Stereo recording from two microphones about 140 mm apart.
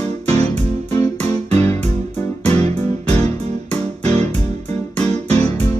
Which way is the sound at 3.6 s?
50° right (ahead or behind).